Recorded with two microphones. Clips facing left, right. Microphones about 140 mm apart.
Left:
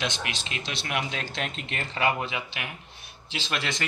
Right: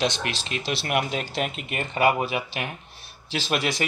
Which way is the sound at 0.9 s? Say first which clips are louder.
Right 5 dB; 50° right (ahead or behind).